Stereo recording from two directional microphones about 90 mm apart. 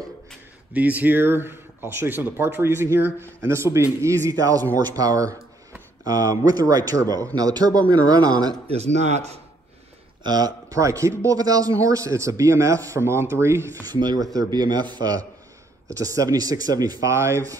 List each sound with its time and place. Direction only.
0.7 s speech: 20° right (ahead or behind)
4.3 s speech: 45° right (ahead or behind)
10.2 s speech: 45° right (ahead or behind); by 13.7 s 30° right (ahead or behind)
13.8 s speech: 45° right (ahead or behind)
15.9 s speech: 40° right (ahead or behind)
17.1 s speech: 35° right (ahead or behind)